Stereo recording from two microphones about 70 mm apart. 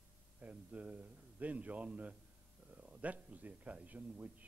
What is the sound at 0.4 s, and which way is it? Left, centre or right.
A man's voice, centre.